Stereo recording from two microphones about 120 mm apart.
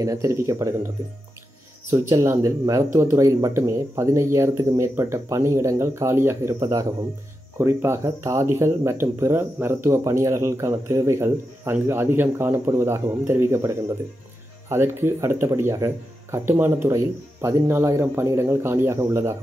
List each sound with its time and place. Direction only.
0.0 s speech: 25° right (ahead or behind)
1.9 s speech: 20° right (ahead or behind)